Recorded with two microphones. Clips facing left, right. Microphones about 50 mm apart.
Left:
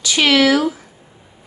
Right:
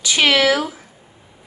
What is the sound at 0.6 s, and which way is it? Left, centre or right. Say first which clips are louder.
Speech: left 5 dB; centre.